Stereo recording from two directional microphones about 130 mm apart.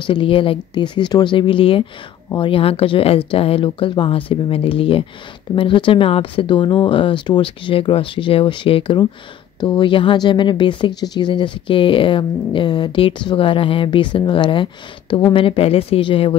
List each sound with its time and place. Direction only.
0.0 s speech: 40° left (ahead or behind)